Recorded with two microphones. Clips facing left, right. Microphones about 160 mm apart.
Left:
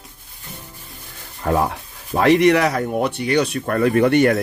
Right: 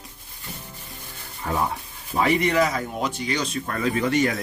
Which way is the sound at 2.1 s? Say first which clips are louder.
Left 6 dB; 75° left (ahead or behind).